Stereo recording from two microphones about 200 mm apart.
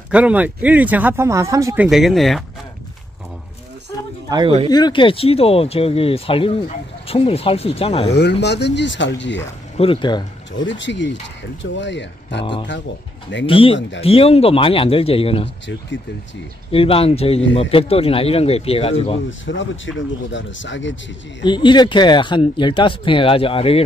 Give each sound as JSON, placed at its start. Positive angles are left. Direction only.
{"t": 0.1, "sound": "speech", "side_deg": -5}
{"t": 1.9, "sound": "speech", "side_deg": 0}
{"t": 4.3, "sound": "speech", "side_deg": -25}
{"t": 4.6, "sound": "speech", "side_deg": 20}
{"t": 8.2, "sound": "speech", "side_deg": 60}
{"t": 9.8, "sound": "speech", "side_deg": 25}
{"t": 10.6, "sound": "speech", "side_deg": 65}
{"t": 13.5, "sound": "speech", "side_deg": 25}
{"t": 13.7, "sound": "speech", "side_deg": 65}
{"t": 14.0, "sound": "speech", "side_deg": 30}
{"t": 15.4, "sound": "speech", "side_deg": 65}
{"t": 16.7, "sound": "speech", "side_deg": 30}
{"t": 19.4, "sound": "speech", "side_deg": 70}
{"t": 21.5, "sound": "speech", "side_deg": 25}